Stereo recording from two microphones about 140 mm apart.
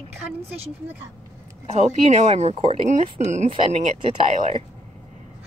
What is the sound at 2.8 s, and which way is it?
Speech, 55° right (ahead or behind).